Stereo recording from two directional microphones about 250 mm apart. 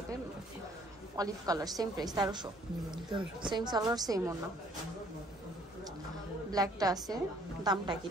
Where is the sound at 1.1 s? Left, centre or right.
Centre.